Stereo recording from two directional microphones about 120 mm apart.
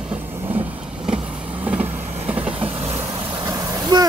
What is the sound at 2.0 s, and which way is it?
Train, 60° right (ahead or behind).